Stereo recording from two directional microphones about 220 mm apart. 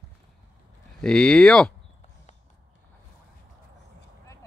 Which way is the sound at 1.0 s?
5° left (ahead or behind).